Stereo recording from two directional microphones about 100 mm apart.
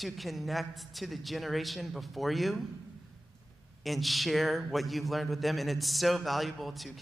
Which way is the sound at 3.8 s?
Centre (ahead or behind).